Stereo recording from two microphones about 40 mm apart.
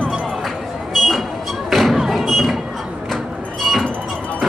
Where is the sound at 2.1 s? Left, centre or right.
Centre.